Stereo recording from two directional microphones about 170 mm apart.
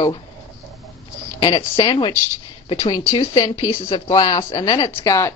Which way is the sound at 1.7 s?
30° left (ahead or behind).